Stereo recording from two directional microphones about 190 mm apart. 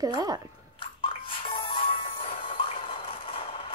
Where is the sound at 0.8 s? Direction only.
25° left (ahead or behind).